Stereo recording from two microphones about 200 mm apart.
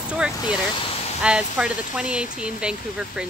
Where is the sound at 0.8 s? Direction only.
25° left (ahead or behind).